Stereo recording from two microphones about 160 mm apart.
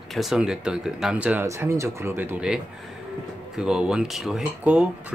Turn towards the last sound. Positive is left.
turn(degrees=-5)  # may be behind; listen again after turning